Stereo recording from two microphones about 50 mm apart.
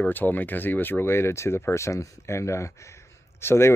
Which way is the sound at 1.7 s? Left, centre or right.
Left.